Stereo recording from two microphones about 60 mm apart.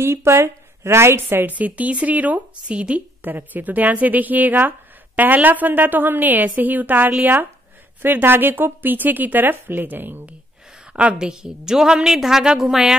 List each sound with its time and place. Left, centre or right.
0.0 s a woman's voice: right; by 3.0 s centre
3.3 s a woman's voice: right
10.9 s a woman's voice: centre